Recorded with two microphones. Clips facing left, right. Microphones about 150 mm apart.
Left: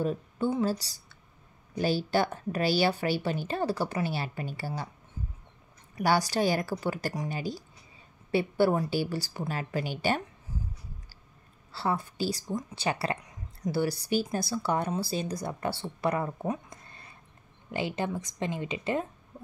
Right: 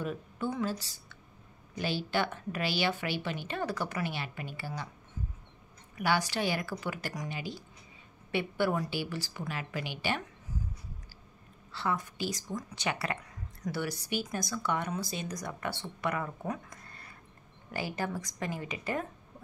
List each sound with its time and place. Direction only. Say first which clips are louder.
0.0 s speech: left 6 dB; 30° left (ahead or behind)
5.9 s speech: left 4 dB; 35° left (ahead or behind)
11.7 s a woman's voice: left 3 dB; 30° left (ahead or behind)